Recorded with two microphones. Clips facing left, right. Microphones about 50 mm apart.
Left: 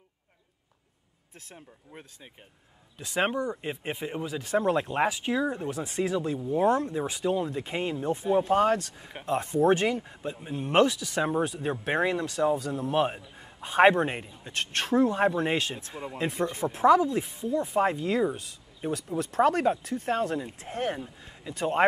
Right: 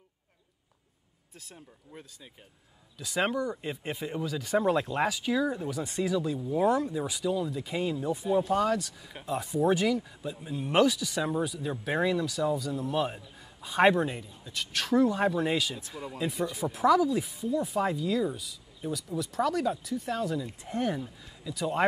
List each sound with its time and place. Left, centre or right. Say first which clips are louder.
3.0 s speech: left 1 dB; left
8.3 s speech: left 3 dB; left
14.8 s speech: left 1 dB; left